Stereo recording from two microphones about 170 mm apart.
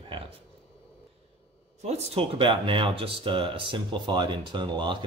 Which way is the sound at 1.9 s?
35° right (ahead or behind).